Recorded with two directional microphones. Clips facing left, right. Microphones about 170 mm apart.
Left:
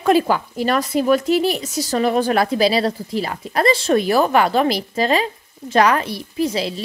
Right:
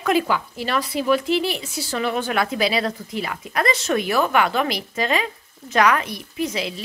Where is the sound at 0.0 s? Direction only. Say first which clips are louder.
Left 4 dB; 40° left (ahead or behind).